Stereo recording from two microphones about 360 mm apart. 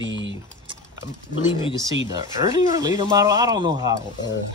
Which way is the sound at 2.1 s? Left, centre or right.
Centre.